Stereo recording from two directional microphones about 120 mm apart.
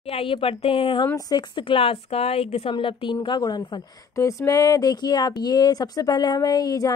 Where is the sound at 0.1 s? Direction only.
50° left (ahead or behind).